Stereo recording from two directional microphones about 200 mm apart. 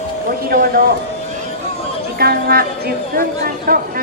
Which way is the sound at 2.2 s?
50° right (ahead or behind).